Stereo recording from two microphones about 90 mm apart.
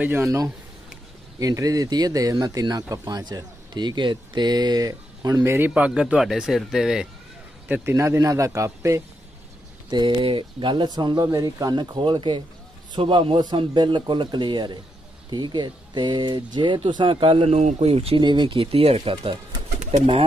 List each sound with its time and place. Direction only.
0.0 s a man's voice: 25° right (ahead or behind)
5.4 s speech: 25° right (ahead or behind)
5.7 s speech: 10° right (ahead or behind)
7.6 s a man's voice: 20° right (ahead or behind)
9.8 s speech: 55° right (ahead or behind)
10.2 s speech: 70° right (ahead or behind)
12.9 s a man's voice: 75° right (ahead or behind)
13.7 s speech: 60° right (ahead or behind); by 19.3 s 90° right